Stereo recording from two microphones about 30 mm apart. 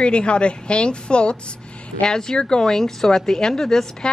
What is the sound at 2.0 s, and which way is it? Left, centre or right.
A woman's voice, left.